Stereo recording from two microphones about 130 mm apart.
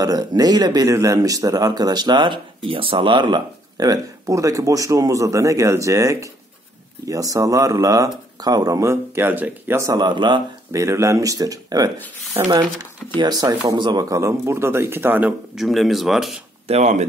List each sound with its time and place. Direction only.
0.0 s speech: 30° right (ahead or behind)
10.7 s speech: 25° right (ahead or behind)
13.2 s speech: 30° right (ahead or behind); by 15.3 s 15° right (ahead or behind)
15.5 s speech: centre (ahead or behind)
16.6 s speech: 60° right (ahead or behind)